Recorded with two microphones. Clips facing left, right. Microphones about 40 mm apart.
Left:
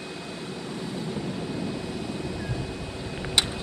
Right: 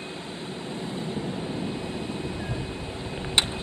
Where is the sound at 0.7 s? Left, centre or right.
Right.